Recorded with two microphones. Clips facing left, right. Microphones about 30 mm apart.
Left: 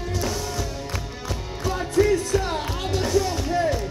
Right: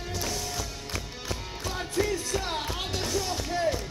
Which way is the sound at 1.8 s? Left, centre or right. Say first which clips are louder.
Left 9 dB; centre.